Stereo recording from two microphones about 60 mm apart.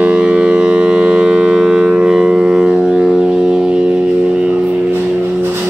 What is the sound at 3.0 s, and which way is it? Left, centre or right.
Music, centre.